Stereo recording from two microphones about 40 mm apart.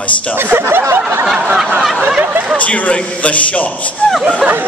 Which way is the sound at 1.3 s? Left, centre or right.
Right.